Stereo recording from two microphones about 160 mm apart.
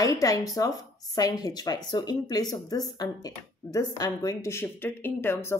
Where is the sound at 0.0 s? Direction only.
20° left (ahead or behind).